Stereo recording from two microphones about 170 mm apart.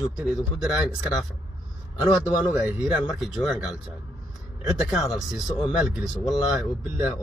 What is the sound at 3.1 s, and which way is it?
Speech, 5° right (ahead or behind).